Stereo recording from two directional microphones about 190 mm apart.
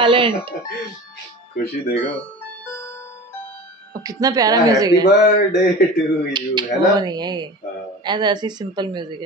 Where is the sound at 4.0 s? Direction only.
20° right (ahead or behind).